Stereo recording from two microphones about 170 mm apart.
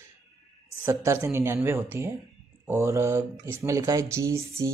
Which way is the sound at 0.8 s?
15° right (ahead or behind).